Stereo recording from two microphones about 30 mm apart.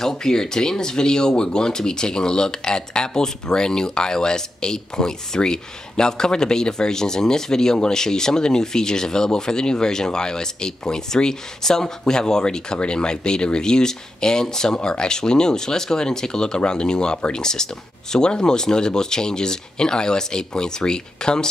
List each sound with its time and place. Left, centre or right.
0.0 s speech: centre